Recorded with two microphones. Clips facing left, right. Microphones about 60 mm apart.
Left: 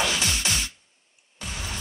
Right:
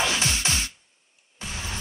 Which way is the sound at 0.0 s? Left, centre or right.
Right.